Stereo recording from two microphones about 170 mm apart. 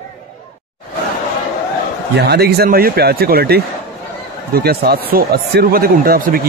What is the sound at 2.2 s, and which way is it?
A man's voice, 70° right (ahead or behind).